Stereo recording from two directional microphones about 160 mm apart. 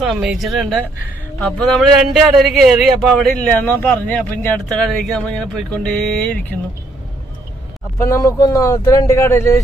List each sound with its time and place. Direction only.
0.0 s a man's voice: 5° right (ahead or behind)
8.0 s speech: 20° left (ahead or behind)